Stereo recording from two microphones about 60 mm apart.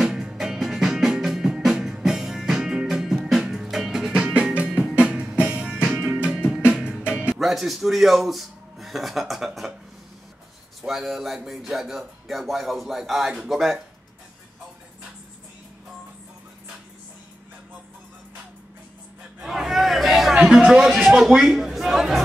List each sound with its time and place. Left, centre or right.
0.0 s music: centre
7.3 s speech: centre
10.8 s speech: centre
19.4 s a sound: centre
20.4 s a man's voice: centre